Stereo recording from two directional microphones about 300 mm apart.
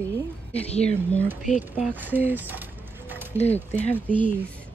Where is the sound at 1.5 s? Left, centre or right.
Left.